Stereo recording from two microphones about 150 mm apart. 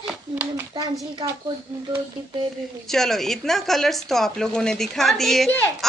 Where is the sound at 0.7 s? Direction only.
30° right (ahead or behind).